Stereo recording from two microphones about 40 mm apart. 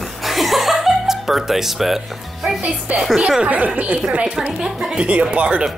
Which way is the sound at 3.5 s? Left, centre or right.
Right.